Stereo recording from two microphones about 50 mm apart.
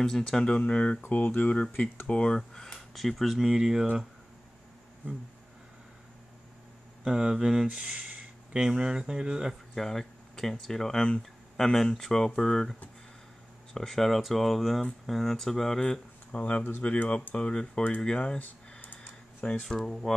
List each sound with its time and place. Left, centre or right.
0.6 s speech: left
1.0 s speech: left
2.0 s speech: centre
2.6 s speech: centre
7.1 s speech: centre
7.6 s speech: right
8.5 s speech: centre
9.8 s speech: centre
13.7 s speech: centre
15.9 s speech: left
19.7 s speech: centre